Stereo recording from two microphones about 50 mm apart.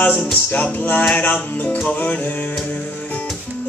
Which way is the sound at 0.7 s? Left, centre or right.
Left.